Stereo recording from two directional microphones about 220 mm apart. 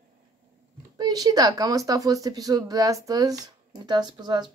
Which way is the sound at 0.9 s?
15° right (ahead or behind).